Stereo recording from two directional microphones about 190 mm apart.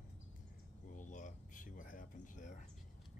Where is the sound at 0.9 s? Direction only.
45° left (ahead or behind).